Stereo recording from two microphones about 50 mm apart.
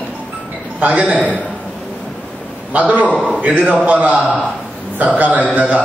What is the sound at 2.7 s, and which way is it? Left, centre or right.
A man's voice, right.